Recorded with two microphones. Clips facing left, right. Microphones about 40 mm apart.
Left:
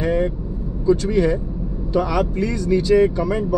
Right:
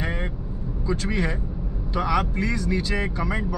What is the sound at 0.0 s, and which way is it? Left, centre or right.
Vehicle, right.